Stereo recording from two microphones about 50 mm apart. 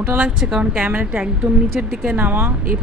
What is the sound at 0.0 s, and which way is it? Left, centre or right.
A woman's voice, right.